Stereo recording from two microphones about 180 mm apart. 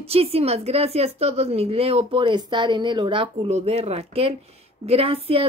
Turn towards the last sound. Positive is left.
turn(degrees=-35)  # may be behind; listen again after turning